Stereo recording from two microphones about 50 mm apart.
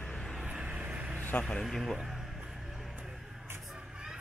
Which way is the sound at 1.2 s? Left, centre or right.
Left.